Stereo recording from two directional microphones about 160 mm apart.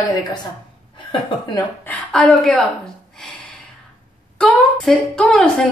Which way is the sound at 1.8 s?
5° left (ahead or behind).